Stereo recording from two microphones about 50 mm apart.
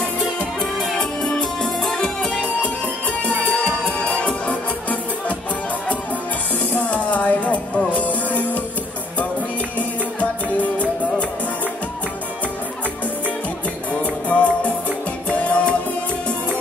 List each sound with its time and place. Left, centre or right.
0.9 s music: centre
2.4 s music: left
6.7 s music: left
9.8 s music: left
14.0 s music: left